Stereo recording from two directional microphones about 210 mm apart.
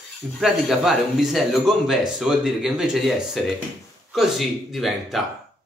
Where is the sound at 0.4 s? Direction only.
Centre (ahead or behind).